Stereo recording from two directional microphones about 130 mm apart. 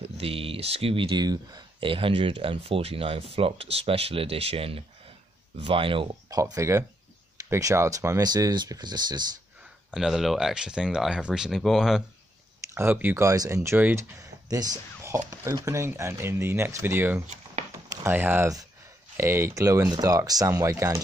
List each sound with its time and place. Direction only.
0.0 s speech: 50° right (ahead or behind)
6.3 s speech: 25° right (ahead or behind)
9.8 s speech: centre (ahead or behind)
12.7 s speech: 15° right (ahead or behind)
14.5 s speech: 30° right (ahead or behind)